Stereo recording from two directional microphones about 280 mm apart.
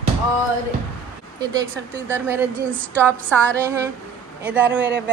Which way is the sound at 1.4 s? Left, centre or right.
Centre.